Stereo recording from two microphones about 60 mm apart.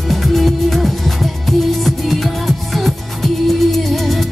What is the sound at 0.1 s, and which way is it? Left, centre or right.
Music, centre.